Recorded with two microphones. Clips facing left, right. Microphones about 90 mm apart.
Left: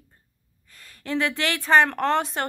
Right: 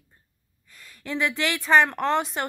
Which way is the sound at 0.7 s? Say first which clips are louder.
Left 3 dB; 40° left (ahead or behind).